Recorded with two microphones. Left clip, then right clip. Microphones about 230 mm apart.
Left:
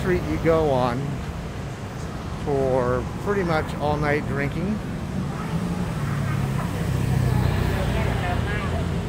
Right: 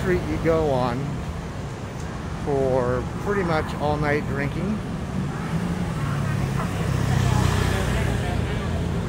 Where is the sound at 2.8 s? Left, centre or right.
Centre.